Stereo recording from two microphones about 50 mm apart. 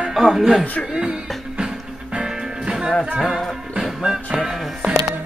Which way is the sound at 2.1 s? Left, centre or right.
Centre.